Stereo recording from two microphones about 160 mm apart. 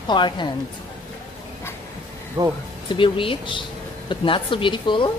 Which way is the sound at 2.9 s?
30° left (ahead or behind).